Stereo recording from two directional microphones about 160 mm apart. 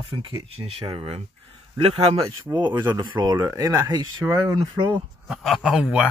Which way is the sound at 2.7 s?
25° right (ahead or behind).